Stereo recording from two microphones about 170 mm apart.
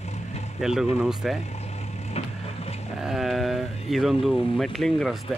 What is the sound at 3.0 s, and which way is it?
Speech, centre (ahead or behind).